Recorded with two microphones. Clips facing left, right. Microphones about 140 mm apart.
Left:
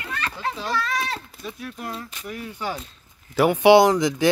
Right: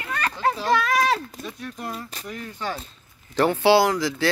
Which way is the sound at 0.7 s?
90° right.